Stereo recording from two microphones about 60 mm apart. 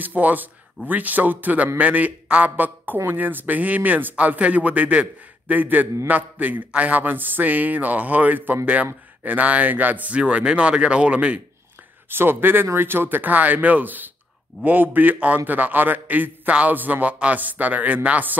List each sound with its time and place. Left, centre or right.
0.0 s a man's voice: right
12.1 s a man's voice: right